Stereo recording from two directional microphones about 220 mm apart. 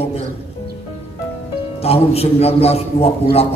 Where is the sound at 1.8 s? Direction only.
25° left (ahead or behind).